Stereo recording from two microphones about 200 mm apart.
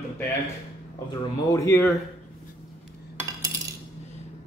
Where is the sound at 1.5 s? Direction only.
15° left (ahead or behind).